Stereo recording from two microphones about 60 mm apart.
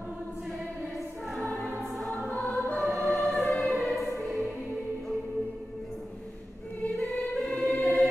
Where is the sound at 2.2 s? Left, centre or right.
Left.